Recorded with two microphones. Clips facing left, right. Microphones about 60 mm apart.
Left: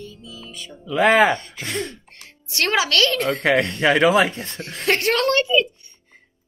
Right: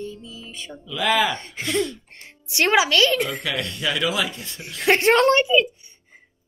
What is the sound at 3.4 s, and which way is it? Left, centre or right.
Speech, left.